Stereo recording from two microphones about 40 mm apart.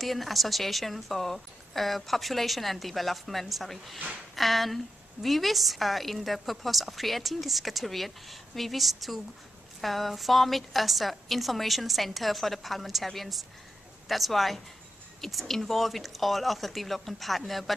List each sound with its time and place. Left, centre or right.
0.0 s a woman's voice: centre